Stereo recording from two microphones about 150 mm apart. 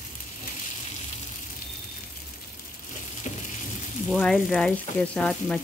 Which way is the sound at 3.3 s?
50° left (ahead or behind).